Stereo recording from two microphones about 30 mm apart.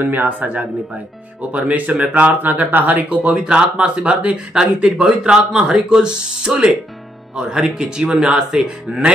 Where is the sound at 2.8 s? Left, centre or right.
Right.